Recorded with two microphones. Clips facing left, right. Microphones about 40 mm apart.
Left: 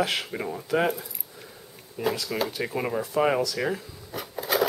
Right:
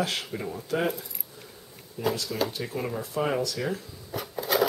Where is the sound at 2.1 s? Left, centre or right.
Left.